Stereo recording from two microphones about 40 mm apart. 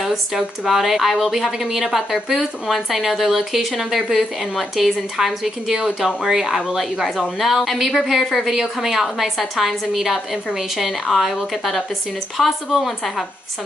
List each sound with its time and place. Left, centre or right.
0.3 s a woman's voice: centre